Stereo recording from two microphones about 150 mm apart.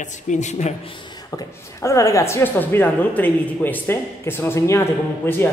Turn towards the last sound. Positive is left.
turn(degrees=15)  # may be behind; listen again after turning